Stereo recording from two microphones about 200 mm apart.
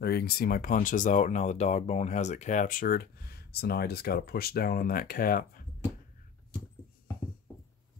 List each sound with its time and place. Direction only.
0.0 s speech: 50° left (ahead or behind)